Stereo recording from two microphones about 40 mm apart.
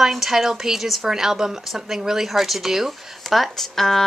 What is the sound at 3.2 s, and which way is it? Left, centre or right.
Speech, centre.